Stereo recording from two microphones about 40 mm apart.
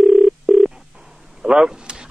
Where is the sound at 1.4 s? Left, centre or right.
Centre.